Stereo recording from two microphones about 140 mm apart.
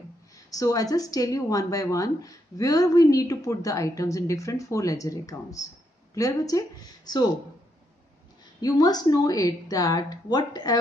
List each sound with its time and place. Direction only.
0.5 s speech: 25° left (ahead or behind)
8.5 s speech: 25° left (ahead or behind)